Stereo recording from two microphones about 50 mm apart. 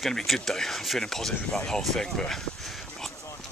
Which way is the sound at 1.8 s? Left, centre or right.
Centre.